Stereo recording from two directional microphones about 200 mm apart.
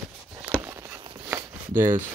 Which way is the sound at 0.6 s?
15° right (ahead or behind).